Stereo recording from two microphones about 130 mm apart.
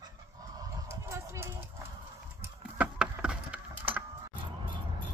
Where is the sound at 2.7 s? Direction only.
5° right (ahead or behind).